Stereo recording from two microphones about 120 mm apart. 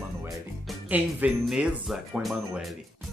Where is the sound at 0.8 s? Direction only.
15° right (ahead or behind).